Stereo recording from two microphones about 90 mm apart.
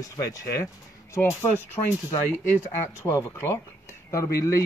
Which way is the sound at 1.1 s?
25° left (ahead or behind).